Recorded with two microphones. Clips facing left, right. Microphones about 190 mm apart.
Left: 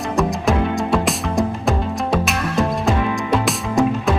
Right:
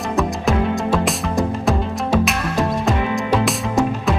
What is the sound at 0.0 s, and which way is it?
Music, centre (ahead or behind).